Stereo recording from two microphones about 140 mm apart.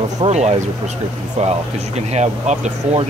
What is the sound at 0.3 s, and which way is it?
Speech, 55° right (ahead or behind).